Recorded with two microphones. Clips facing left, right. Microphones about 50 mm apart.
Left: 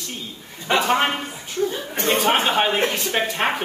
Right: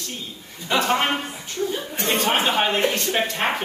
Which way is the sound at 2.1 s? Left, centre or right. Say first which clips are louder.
Left 2 dB; centre.